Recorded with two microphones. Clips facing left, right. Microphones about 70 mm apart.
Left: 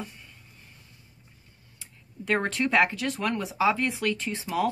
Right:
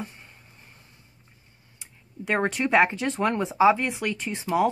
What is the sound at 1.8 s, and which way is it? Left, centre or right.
A woman's voice, centre.